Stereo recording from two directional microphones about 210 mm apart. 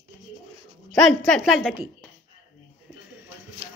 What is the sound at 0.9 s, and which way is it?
Speech, 5° left (ahead or behind).